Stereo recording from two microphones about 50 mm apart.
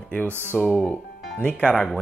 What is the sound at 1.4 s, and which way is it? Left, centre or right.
Speech, left.